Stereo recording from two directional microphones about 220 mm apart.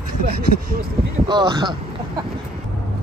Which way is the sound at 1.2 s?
20° right (ahead or behind).